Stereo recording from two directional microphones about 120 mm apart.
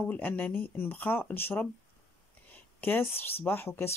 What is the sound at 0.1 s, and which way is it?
Speech, 15° left (ahead or behind).